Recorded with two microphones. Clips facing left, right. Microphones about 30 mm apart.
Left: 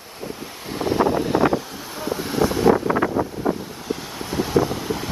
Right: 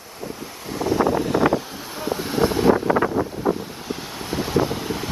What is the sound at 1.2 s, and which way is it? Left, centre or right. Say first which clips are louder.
Vehicle: even; centre.